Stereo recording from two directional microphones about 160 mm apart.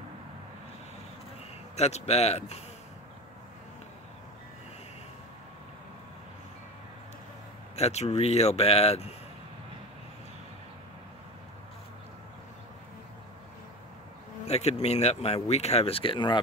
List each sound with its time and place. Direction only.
1.8 s a man's voice: 45° left (ahead or behind)
7.7 s speech: 45° left (ahead or behind)
14.5 s speech: 40° left (ahead or behind)